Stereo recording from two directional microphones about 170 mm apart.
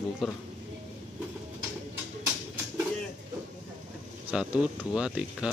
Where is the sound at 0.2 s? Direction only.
Centre (ahead or behind).